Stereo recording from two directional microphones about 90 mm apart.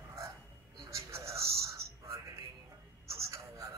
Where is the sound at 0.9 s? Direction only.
35° right (ahead or behind).